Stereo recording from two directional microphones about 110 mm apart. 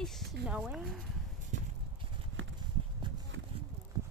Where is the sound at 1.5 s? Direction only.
90° right.